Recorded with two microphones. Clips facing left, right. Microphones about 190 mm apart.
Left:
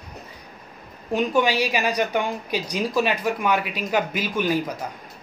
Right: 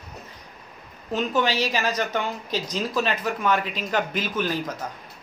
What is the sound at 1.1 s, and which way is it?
A woman's voice, 15° left (ahead or behind).